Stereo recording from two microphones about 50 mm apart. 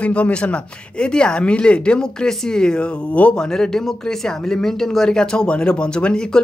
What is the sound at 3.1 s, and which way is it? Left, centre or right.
Speech, left.